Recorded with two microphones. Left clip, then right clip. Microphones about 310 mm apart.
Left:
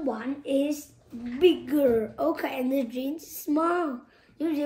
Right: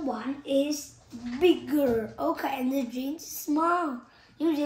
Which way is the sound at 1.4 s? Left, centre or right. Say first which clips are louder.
Left 2 dB; centre.